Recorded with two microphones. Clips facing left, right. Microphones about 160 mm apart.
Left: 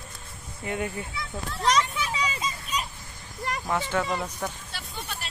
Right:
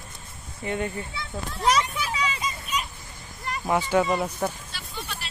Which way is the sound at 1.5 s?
10° right (ahead or behind).